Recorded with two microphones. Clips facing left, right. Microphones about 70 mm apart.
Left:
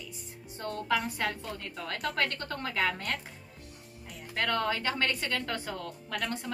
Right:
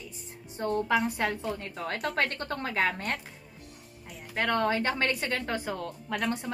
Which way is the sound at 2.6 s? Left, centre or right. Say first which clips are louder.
Right 2 dB; right.